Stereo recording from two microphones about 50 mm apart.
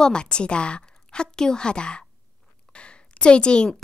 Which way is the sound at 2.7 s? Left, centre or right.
Left.